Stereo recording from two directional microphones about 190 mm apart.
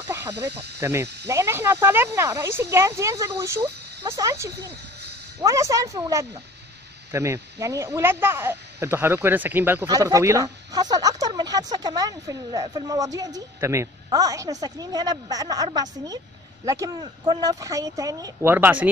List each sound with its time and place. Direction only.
0.0 s snake: 15° right (ahead or behind)
0.7 s speech: 15° right (ahead or behind)